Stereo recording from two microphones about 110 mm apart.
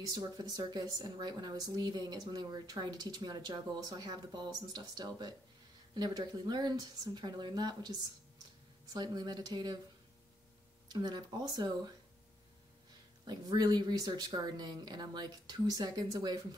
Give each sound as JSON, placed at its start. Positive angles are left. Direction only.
{"t": 0.1, "sound": "a woman's voice", "side_deg": -40}
{"t": 10.9, "sound": "a woman's voice", "side_deg": -40}
{"t": 13.3, "sound": "a woman's voice", "side_deg": -40}